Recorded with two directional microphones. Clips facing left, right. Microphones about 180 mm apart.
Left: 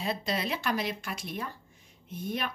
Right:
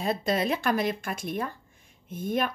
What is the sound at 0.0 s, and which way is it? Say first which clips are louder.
A woman's voice: right 5 dB; 50° right (ahead or behind).